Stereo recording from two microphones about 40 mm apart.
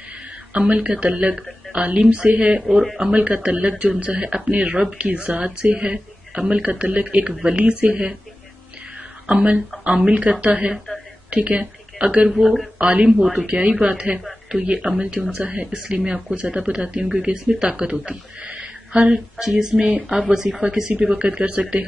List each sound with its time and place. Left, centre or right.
0.5 s speech: right
4.1 s speech: right
9.3 s a woman's voice: right
13.2 s speech: centre
13.5 s speech: right
15.3 s speech: right
15.6 s speech: right
18.4 s a sound: right
18.9 s speech: right
19.3 s speech: centre
21.0 s speech: right